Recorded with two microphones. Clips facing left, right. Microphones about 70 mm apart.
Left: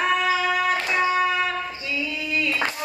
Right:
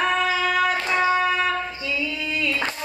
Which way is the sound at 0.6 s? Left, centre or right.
Right.